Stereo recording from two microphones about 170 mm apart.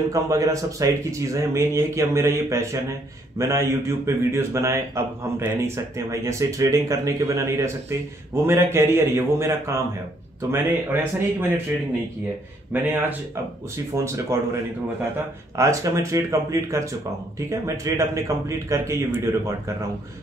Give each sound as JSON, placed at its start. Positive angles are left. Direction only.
{"t": 0.1, "sound": "speech", "side_deg": -20}
{"t": 12.7, "sound": "speech", "side_deg": -10}
{"t": 13.9, "sound": "speech", "side_deg": -15}